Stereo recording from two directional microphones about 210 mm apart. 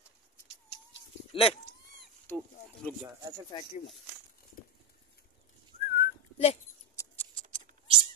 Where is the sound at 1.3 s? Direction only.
25° left (ahead or behind).